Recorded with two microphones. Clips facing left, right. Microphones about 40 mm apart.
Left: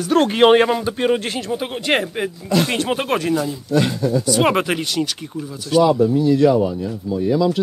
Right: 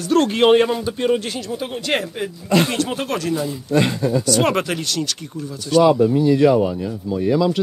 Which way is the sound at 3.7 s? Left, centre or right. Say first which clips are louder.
Even; centre.